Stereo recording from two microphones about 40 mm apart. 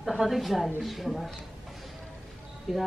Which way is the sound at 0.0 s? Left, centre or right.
Centre.